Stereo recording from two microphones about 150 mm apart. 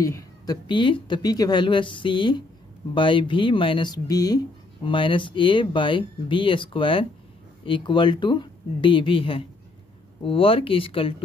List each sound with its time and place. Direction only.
0.0 s speech: 25° left (ahead or behind)